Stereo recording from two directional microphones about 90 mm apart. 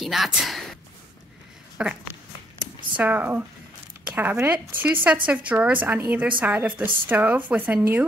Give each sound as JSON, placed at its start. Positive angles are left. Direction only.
{"t": 0.0, "sound": "speech", "side_deg": 0}
{"t": 1.8, "sound": "a woman's voice", "side_deg": -10}
{"t": 3.0, "sound": "a woman's voice", "side_deg": -20}